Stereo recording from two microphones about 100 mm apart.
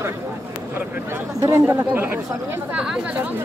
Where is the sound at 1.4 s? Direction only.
30° right (ahead or behind).